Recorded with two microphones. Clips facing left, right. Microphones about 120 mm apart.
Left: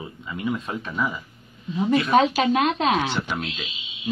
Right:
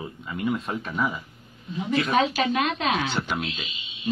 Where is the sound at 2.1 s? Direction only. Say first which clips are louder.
Left 3 dB; 45° left (ahead or behind).